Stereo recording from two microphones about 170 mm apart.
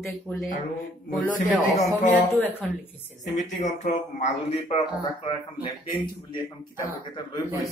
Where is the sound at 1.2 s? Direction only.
50° left (ahead or behind).